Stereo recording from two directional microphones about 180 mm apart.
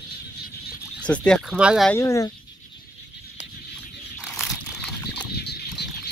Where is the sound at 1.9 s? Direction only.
15° left (ahead or behind).